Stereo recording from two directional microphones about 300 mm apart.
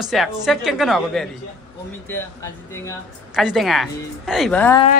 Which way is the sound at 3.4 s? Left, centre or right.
Centre.